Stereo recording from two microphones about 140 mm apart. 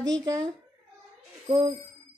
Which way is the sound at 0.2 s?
25° right (ahead or behind).